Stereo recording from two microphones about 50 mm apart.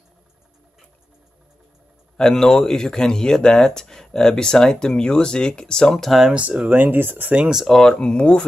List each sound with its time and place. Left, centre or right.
2.1 s speech: centre
6.7 s speech: right
7.6 s speech: centre
7.9 s speech: left